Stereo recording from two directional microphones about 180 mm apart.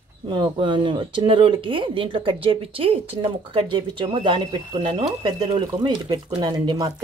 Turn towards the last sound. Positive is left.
turn(degrees=-20)  # may be behind; listen again after turning